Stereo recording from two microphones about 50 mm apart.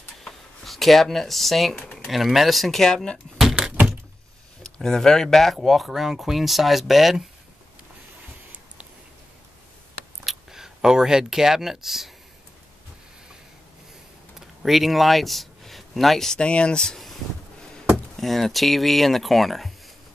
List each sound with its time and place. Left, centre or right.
0.2 s a sound: centre
2.0 s speech: centre
4.6 s speech: centre
10.2 s speech: centre
14.6 s speech: centre
16.3 s speech: left
18.1 s speech: centre